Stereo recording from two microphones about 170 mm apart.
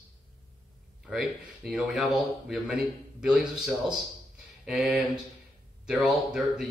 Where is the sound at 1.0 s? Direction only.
Centre (ahead or behind).